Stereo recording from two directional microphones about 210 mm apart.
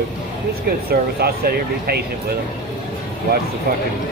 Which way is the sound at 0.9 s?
45° right (ahead or behind).